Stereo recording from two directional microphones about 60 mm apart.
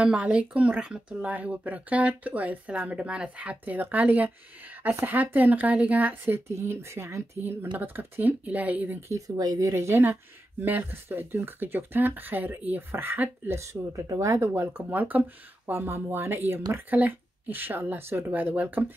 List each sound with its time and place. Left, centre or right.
0.0 s speech: right
6.4 s speech: right
7.8 s speech: right
9.4 s speech: right
9.8 s speech: right
13.9 s speech: right
14.4 s speech: right
15.6 s speech: right